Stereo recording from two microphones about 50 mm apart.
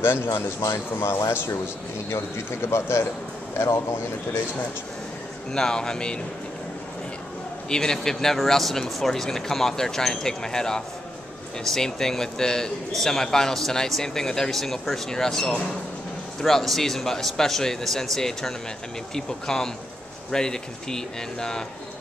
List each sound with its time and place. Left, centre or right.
0.3 s a man's voice: left
5.5 s speech: centre
7.7 s speech: centre